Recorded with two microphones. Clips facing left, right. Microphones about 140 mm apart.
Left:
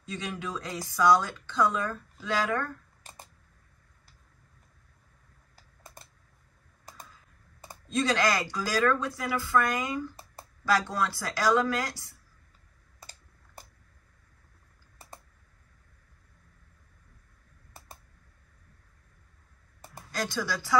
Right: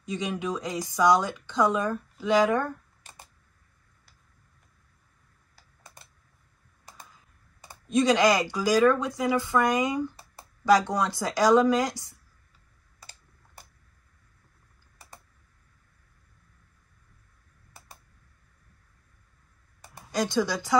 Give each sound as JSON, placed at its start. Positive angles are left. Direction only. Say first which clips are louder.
{"t": 0.0, "sound": "speech", "louder": "right 5 dB", "side_deg": -15}
{"t": 7.9, "sound": "speech", "louder": "right 5 dB", "side_deg": -15}
{"t": 20.1, "sound": "speech", "louder": "right 6 dB", "side_deg": -20}